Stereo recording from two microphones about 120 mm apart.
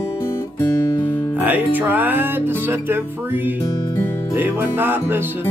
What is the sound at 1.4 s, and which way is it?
Speech, 15° right (ahead or behind).